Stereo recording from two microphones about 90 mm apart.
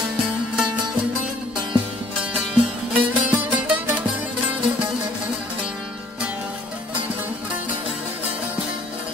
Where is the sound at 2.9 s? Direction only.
15° right (ahead or behind).